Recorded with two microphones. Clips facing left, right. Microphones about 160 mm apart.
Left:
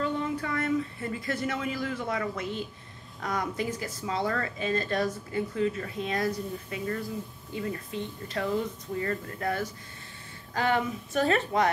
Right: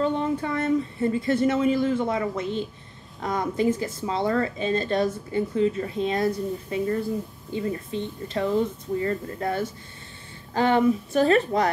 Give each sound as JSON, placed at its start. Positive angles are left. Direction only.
{"t": 0.0, "sound": "a woman's voice", "side_deg": -25}